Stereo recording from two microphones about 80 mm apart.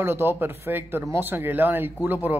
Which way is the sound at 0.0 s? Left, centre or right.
Right.